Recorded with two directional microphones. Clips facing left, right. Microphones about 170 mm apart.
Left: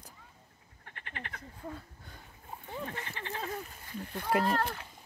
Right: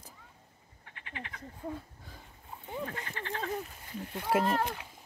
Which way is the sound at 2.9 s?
15° left (ahead or behind).